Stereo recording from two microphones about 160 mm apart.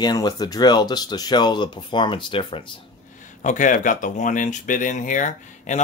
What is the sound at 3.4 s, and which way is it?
Speech, 50° left (ahead or behind).